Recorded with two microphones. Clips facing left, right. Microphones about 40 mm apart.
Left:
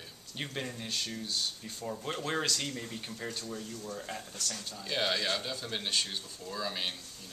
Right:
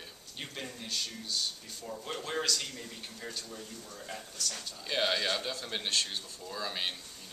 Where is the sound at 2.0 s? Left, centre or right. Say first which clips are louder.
Left 1 dB; centre.